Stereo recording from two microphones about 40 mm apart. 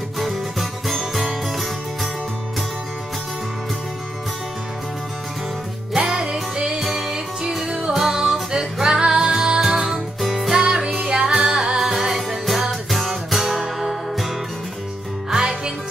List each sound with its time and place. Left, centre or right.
0.2 s music: centre
5.9 s music: centre
11.8 s music: centre
15.3 s music: centre